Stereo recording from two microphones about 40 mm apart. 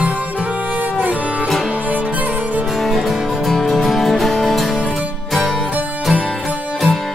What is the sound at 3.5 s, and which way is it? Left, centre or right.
Music, centre.